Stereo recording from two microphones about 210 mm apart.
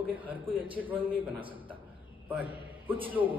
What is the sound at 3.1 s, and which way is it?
Speech, 10° right (ahead or behind).